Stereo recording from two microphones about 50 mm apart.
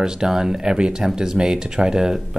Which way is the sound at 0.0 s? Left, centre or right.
Centre.